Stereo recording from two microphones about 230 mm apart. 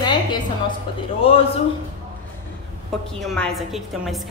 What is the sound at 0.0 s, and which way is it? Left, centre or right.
Music, centre.